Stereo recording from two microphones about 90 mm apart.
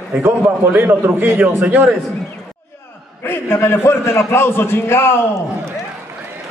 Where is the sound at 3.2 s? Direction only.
25° left (ahead or behind).